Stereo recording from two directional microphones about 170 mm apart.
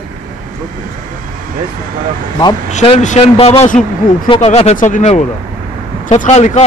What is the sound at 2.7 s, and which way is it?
Speech, 40° left (ahead or behind).